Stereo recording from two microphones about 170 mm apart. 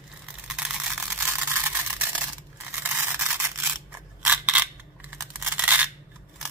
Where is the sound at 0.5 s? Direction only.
5° right (ahead or behind).